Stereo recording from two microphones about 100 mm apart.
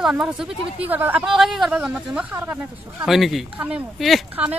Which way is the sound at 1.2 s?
5° right (ahead or behind).